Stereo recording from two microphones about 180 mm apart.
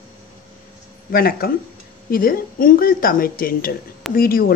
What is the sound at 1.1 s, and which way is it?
A woman's voice, 55° left (ahead or behind).